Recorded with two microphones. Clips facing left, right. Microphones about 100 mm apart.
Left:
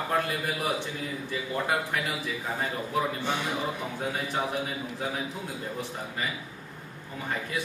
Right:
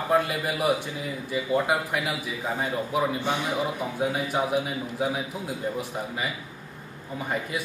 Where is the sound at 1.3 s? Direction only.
10° right (ahead or behind).